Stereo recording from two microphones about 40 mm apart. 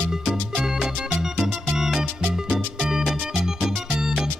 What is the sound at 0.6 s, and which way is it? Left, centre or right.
Music, centre.